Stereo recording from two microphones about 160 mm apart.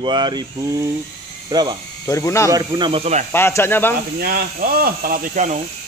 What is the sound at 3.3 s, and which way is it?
Speech, 15° left (ahead or behind).